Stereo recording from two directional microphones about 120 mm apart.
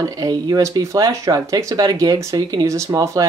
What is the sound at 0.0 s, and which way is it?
Speech, 30° right (ahead or behind).